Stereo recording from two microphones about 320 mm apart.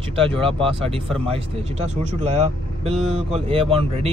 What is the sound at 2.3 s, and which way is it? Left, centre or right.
Speech, centre.